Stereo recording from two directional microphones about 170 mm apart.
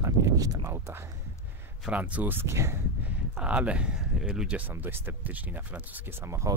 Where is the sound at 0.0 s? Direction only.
20° right (ahead or behind).